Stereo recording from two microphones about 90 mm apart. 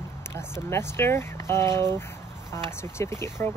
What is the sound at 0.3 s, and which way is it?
Speech, 30° left (ahead or behind).